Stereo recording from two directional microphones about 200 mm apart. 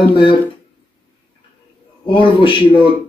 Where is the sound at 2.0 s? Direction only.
25° left (ahead or behind).